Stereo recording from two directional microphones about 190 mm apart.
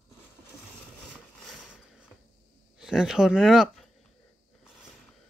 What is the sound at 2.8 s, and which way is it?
Speech, 5° right (ahead or behind).